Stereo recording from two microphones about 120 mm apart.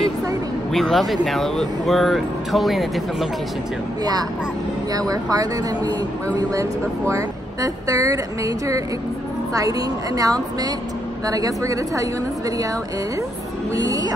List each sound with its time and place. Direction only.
0.7 s speech: centre (ahead or behind)
4.0 s speech: 35° right (ahead or behind)
13.7 s speech: 30° right (ahead or behind)